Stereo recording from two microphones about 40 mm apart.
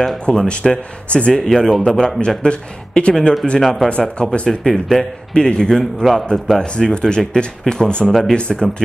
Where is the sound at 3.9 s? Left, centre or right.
Left.